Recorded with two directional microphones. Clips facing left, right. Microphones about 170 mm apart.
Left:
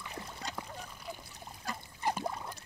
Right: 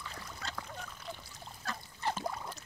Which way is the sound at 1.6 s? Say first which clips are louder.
Left 2 dB; 10° left (ahead or behind).